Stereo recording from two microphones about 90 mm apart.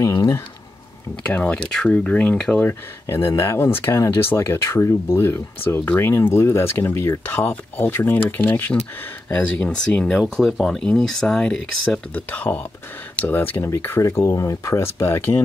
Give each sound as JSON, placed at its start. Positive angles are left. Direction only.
{"t": 0.0, "sound": "speech", "side_deg": 35}
{"t": 1.2, "sound": "speech", "side_deg": 15}
{"t": 2.6, "sound": "speech", "side_deg": 30}
{"t": 12.1, "sound": "speech", "side_deg": 20}
{"t": 14.0, "sound": "speech", "side_deg": 35}